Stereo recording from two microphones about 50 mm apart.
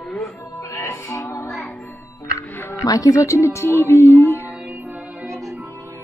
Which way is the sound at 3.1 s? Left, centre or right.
Left.